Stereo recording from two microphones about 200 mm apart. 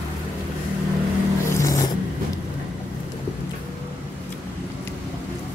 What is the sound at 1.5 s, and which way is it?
Filing, 15° left (ahead or behind).